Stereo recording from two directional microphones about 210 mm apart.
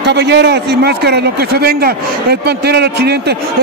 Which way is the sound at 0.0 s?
55° right (ahead or behind).